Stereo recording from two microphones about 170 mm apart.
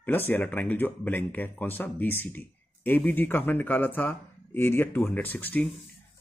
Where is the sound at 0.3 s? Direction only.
10° left (ahead or behind).